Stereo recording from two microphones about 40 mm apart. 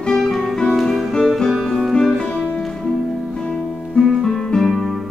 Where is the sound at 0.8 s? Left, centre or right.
Centre.